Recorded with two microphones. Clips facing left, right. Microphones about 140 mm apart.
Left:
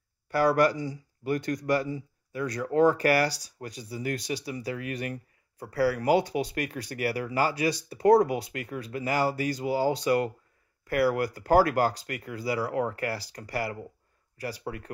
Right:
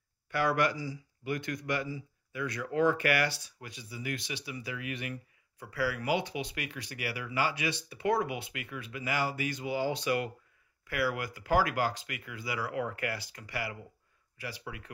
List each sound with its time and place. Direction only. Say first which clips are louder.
0.3 s speech: left 6 dB; 40° left (ahead or behind)